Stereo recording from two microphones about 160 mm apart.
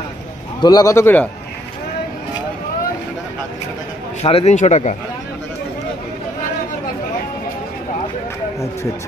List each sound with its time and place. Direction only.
0.6 s a man's voice: 25° left (ahead or behind)
4.2 s speech: 40° left (ahead or behind)